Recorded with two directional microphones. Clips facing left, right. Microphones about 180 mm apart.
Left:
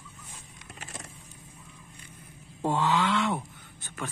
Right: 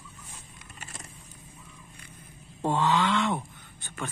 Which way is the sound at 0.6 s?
70° left (ahead or behind).